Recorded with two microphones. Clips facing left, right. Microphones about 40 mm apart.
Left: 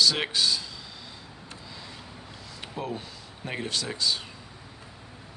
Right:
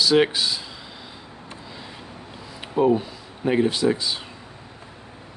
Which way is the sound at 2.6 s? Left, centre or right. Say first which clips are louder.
Right 15 dB; centre.